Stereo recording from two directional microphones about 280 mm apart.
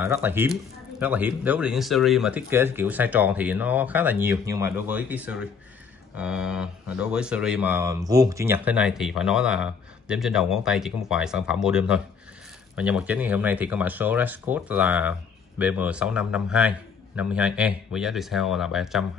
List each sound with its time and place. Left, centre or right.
0.0 s speech: centre